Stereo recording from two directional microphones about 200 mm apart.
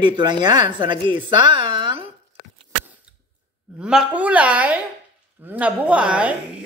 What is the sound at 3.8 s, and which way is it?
Speech, 5° right (ahead or behind).